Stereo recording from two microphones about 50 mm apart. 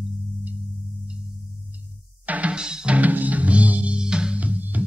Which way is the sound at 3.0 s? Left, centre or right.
Right.